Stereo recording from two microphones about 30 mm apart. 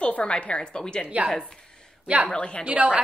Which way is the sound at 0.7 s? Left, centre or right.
Left.